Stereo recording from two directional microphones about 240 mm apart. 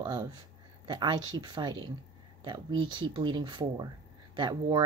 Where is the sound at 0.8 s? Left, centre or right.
Centre.